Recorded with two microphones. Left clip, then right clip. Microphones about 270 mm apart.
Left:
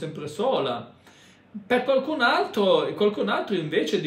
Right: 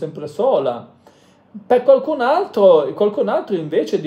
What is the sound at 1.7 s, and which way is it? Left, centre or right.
Speech, centre.